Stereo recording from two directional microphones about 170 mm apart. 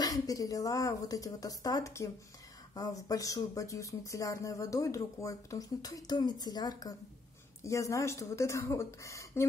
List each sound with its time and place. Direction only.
0.0 s a woman's voice: 20° left (ahead or behind)